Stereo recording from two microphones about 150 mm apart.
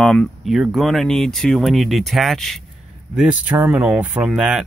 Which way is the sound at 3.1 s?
10° right (ahead or behind).